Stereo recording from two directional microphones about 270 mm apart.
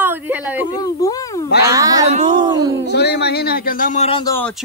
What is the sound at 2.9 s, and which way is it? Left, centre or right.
Speech, left.